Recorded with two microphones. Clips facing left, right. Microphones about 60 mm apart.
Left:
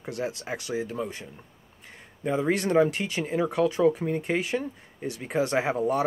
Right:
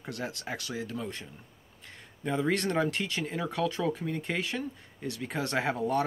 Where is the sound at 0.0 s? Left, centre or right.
Centre.